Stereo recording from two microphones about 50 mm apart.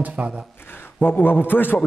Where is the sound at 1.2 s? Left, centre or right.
Left.